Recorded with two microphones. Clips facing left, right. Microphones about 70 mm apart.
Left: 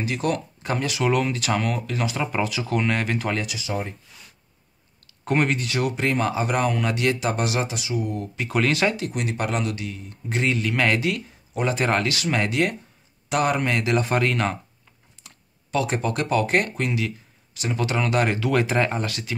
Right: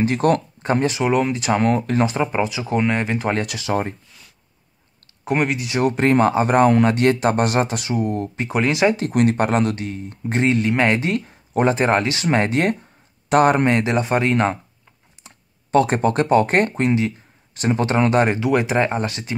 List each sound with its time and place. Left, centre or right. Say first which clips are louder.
0.0 s speech: right 7 dB; right
0.7 s speech: right 7 dB; right
1.0 s speech: even; centre
1.6 s speech: right 8 dB; right
2.1 s speech: right 4 dB; right
3.3 s speech: right 6 dB; right
5.2 s speech: right 2 dB; centre
5.7 s speech: right 6 dB; right
8.5 s speech: right 4 dB; centre
8.9 s speech: right 10 dB; right
11.7 s speech: right 4 dB; right
15.2 s computer keyboard: right 4 dB; centre
15.7 s speech: right 7 dB; right